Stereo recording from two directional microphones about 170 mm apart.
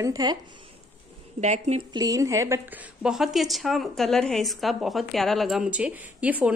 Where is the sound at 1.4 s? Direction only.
40° right (ahead or behind).